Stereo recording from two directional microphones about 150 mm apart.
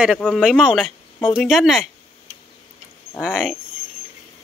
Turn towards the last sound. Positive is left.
turn(degrees=0)  # may be behind; listen again after turning